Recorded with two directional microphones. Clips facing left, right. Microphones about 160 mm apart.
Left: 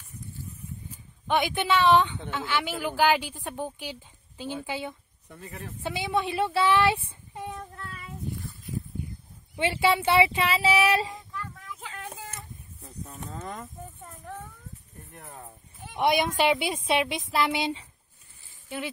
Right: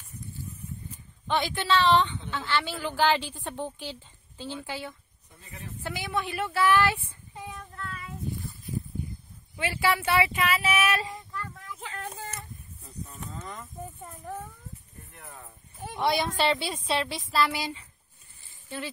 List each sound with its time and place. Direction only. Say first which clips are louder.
0.9 s a woman's voice: left 2 dB; 15° left (ahead or behind)
5.3 s speech: left 11 dB; 60° left (ahead or behind)
5.8 s speech: left 4 dB; 25° left (ahead or behind)
9.6 s speech: left 3 dB; 25° left (ahead or behind)
11.3 s a sound: even; centre (ahead or behind)
13.4 s speech: left 5 dB; 40° left (ahead or behind)
14.0 s speech: right 2 dB; 10° right (ahead or behind)
16.0 s speech: left 3 dB; 20° left (ahead or behind)